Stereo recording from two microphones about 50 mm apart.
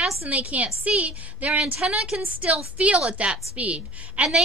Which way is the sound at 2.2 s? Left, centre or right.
Right.